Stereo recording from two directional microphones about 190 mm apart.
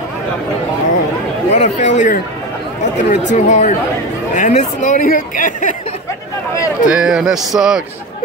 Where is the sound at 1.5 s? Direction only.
40° left (ahead or behind).